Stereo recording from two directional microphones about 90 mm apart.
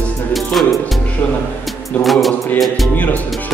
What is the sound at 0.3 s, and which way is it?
Music, centre (ahead or behind).